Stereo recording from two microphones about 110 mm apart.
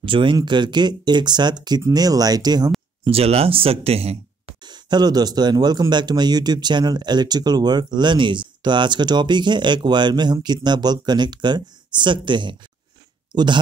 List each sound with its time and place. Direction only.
0.0 s speech: 50° right (ahead or behind)
3.0 s speech: 65° right (ahead or behind)
4.6 s speech: 40° right (ahead or behind)